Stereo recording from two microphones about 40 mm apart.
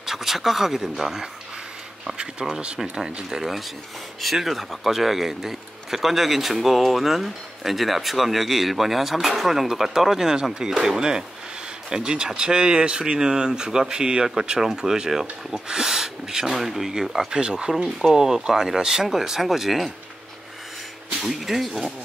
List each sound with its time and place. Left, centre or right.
0.0 s speech: centre
2.4 s speech: centre
17.3 s speech: centre
21.2 s speech: centre